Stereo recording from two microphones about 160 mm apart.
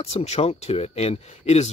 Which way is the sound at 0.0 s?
40° left (ahead or behind).